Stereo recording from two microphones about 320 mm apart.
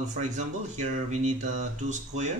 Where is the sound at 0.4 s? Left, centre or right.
Right.